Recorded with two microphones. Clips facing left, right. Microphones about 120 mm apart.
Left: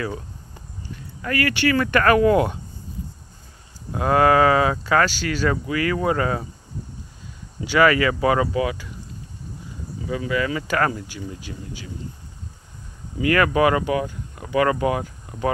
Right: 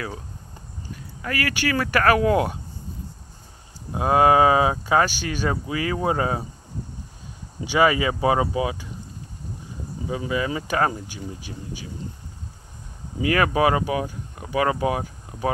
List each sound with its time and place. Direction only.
1.2 s speech: 15° right (ahead or behind)
3.9 s speech: 15° right (ahead or behind)
7.6 s speech: 15° right (ahead or behind)
10.0 s speech: 20° right (ahead or behind)
13.3 s speech: 15° right (ahead or behind)